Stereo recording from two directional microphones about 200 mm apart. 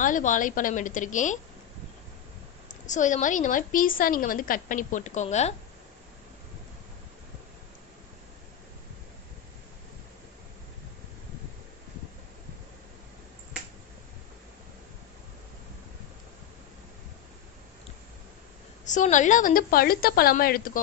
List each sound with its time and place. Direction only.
0.0 s a woman's voice: 40° left (ahead or behind)
2.9 s a woman's voice: 40° left (ahead or behind)
18.9 s a woman's voice: 40° left (ahead or behind)